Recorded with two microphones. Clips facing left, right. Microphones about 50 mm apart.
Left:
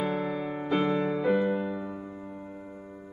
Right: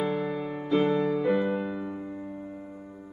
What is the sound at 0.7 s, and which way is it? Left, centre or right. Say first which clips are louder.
Music: right 3 dB; left.